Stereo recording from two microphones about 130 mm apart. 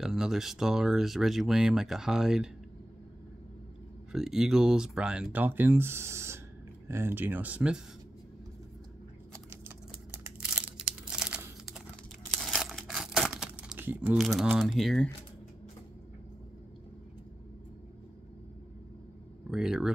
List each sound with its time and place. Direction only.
0.0 s speech: 5° right (ahead or behind)
4.1 s speech: 5° right (ahead or behind)
10.4 s crumpling: 5° right (ahead or behind)
12.4 s tearing: centre (ahead or behind)
13.7 s a sound: 15° right (ahead or behind)
14.1 s speech: 5° right (ahead or behind)
19.5 s speech: 5° right (ahead or behind)